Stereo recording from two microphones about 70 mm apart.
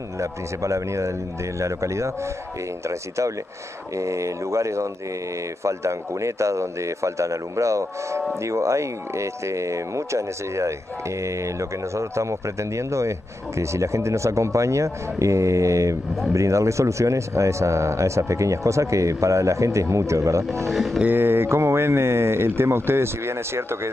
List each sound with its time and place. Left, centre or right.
0.2 s speech: right
11.9 s speech: right
20.7 s music: centre
21.0 s speech: right